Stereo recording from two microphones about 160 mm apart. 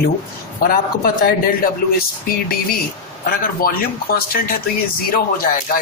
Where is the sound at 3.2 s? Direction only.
65° left (ahead or behind).